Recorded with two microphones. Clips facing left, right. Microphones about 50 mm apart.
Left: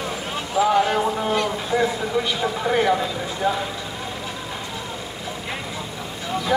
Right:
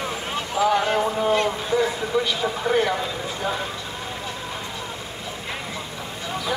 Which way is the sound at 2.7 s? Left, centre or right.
Centre.